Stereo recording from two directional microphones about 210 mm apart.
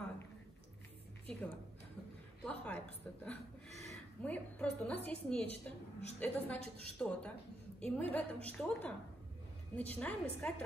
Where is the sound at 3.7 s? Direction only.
30° right (ahead or behind).